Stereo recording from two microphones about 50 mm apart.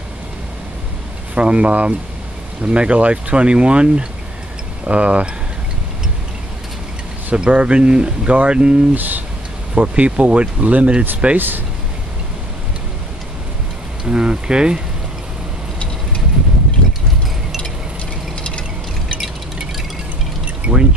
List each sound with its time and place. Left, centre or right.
1.3 s speech: right
7.3 s speech: right
8.9 s speech: right
9.8 s speech: right
11.3 s speech: right
14.0 s speech: centre
20.6 s pour: right